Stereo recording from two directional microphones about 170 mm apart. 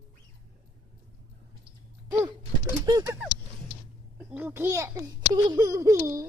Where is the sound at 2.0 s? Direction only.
20° right (ahead or behind).